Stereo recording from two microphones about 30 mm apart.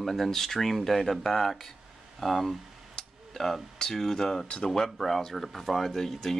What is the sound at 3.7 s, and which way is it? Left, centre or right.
Speech, centre.